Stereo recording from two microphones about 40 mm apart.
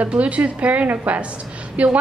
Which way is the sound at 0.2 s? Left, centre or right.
Right.